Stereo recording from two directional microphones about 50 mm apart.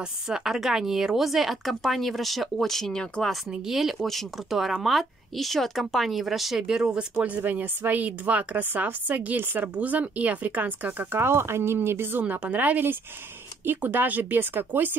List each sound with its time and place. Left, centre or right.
0.3 s speech: centre
3.3 s speech: centre
7.2 s a woman's voice: right
11.1 s speech: right
12.2 s a woman's voice: right